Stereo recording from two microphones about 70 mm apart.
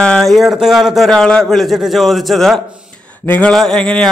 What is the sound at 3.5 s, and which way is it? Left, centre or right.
Speech, centre.